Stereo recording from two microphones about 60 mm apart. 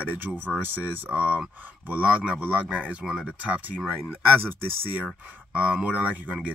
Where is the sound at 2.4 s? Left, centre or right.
Right.